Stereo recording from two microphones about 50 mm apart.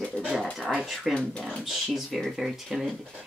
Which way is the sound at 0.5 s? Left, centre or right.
Centre.